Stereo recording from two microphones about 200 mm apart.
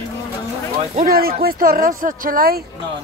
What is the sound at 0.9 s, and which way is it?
Speech, 45° right (ahead or behind).